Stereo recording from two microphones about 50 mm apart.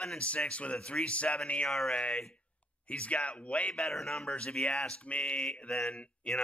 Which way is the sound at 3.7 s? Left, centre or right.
Centre.